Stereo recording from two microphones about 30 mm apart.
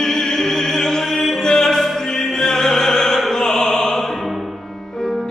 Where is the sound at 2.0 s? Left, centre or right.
Centre.